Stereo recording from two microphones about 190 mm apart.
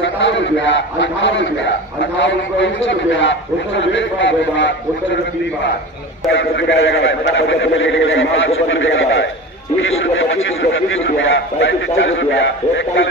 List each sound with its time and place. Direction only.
0.0 s a man's voice: 75° left (ahead or behind)
6.3 s a man's voice: 80° left